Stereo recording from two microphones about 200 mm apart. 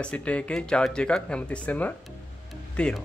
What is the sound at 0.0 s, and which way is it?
Speech, 5° left (ahead or behind).